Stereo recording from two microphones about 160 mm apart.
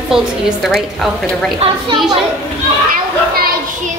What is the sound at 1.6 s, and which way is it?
Speech, 30° right (ahead or behind).